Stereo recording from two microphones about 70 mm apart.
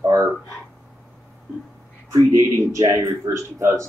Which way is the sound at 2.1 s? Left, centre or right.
Right.